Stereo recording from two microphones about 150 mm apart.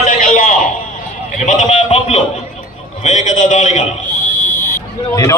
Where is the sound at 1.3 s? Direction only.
55° left (ahead or behind).